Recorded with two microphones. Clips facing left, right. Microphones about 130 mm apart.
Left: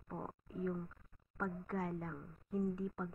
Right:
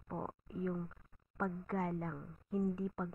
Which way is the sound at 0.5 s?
5° right (ahead or behind).